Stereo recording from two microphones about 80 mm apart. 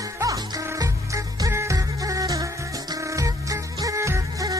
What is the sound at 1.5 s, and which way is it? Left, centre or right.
Music, right.